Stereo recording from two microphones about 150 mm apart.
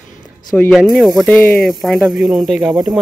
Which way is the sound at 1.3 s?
10° left (ahead or behind).